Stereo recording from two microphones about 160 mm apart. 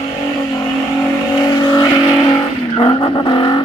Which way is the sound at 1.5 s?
25° left (ahead or behind).